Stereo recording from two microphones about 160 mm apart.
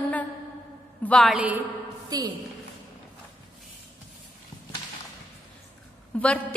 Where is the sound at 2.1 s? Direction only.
25° right (ahead or behind).